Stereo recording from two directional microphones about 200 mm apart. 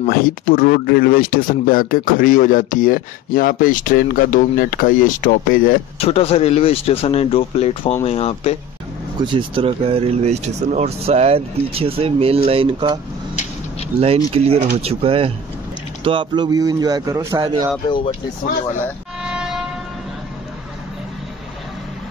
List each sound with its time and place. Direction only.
0.0 s speech: 45° left (ahead or behind)
5.9 s speech: 30° left (ahead or behind)
9.2 s speech: 25° right (ahead or behind)
17.8 s speech: 25° left (ahead or behind)
19.2 s music: 5° right (ahead or behind)